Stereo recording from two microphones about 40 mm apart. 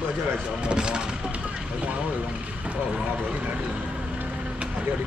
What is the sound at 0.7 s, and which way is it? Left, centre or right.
Speech, right.